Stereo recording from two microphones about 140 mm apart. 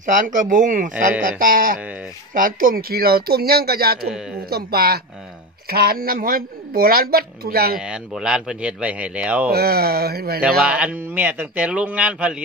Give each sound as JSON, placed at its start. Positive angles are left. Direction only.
{"t": 0.0, "sound": "speech", "side_deg": -70}
{"t": 1.4, "sound": "a woman's voice", "side_deg": -80}
{"t": 7.8, "sound": "speech", "side_deg": -5}
{"t": 9.5, "sound": "a woman's voice", "side_deg": -90}
{"t": 10.6, "sound": "speech", "side_deg": -10}